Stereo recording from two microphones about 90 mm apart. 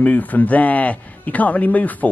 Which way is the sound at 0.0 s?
15° left (ahead or behind).